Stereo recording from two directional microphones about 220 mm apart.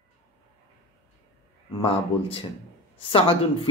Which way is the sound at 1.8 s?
25° left (ahead or behind).